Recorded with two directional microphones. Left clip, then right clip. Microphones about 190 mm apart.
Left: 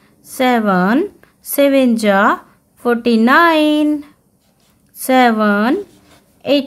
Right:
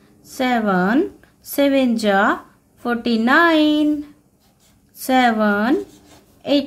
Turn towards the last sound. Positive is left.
turn(degrees=30)  # may be behind; listen again after turning